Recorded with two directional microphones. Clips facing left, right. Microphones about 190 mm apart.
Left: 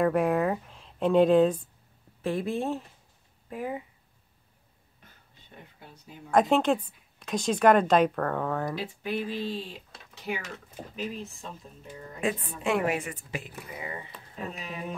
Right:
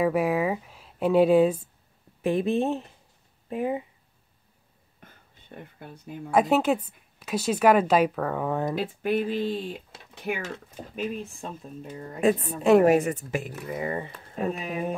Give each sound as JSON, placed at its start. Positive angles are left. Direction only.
{"t": 0.0, "sound": "a woman's voice", "side_deg": -5}
{"t": 2.2, "sound": "speech", "side_deg": -20}
{"t": 5.0, "sound": "a sound", "side_deg": -55}
{"t": 6.3, "sound": "a woman's voice", "side_deg": -5}
{"t": 8.7, "sound": "speech", "side_deg": -55}
{"t": 12.2, "sound": "speech", "side_deg": -40}